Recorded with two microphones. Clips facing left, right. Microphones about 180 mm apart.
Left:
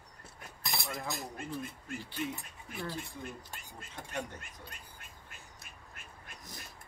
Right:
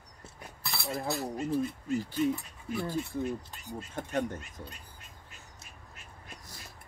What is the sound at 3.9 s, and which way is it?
Speech, 50° right (ahead or behind).